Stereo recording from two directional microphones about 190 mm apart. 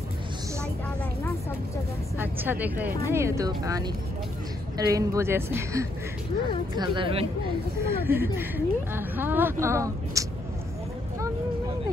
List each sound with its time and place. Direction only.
2.1 s a woman's voice: 10° right (ahead or behind); by 7.2 s 25° right (ahead or behind)
7.8 s speech: 10° right (ahead or behind)